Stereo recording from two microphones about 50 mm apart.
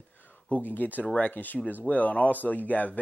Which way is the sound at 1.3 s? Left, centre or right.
Left.